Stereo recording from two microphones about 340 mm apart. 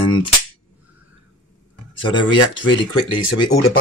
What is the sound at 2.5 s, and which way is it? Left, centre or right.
Speech, centre.